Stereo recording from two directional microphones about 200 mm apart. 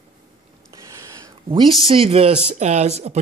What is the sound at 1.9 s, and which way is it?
Speech, 30° right (ahead or behind).